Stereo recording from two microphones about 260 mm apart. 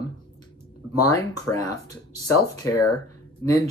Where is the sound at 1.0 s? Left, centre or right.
Centre.